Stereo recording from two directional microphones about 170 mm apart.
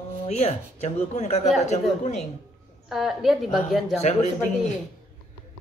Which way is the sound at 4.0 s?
40° left (ahead or behind).